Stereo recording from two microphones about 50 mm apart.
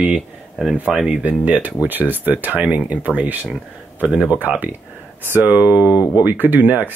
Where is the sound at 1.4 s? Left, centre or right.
Right.